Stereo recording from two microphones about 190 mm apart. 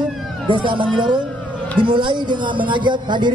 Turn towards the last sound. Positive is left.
turn(degrees=-25)  # may be behind; listen again after turning